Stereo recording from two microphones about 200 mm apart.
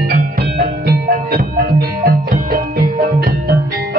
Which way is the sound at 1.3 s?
50° right (ahead or behind).